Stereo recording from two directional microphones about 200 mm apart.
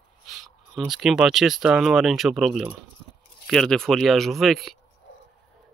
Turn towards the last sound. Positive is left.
turn(degrees=0)  # may be behind; listen again after turning